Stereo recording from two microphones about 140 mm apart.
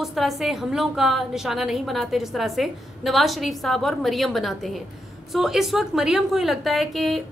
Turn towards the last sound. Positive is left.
turn(degrees=0)  # may be behind; listen again after turning